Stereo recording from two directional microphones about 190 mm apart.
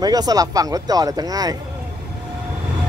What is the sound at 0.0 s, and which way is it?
Speech, 20° right (ahead or behind).